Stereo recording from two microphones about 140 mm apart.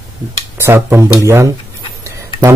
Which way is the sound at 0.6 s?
15° right (ahead or behind).